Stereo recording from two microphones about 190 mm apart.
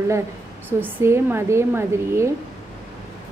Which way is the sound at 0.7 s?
10° right (ahead or behind).